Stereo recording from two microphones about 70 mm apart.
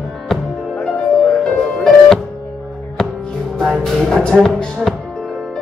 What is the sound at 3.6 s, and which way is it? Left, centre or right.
Music, centre.